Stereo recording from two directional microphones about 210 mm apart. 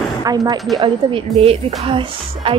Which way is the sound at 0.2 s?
20° right (ahead or behind).